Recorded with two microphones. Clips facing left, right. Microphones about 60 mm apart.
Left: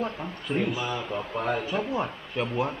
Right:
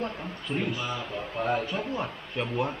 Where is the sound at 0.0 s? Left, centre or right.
Centre.